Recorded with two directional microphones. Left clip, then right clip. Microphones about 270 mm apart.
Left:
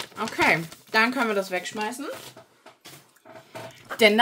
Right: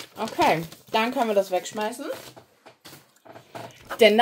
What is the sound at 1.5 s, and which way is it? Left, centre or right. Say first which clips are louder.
Speech: right 2 dB; left.